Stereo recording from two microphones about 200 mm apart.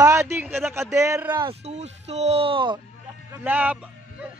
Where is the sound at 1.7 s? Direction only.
35° right (ahead or behind).